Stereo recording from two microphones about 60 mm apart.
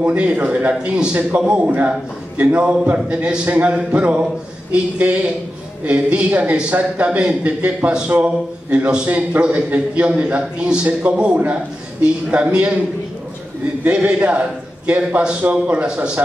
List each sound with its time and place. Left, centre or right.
0.0 s speech: right
13.8 s speech: centre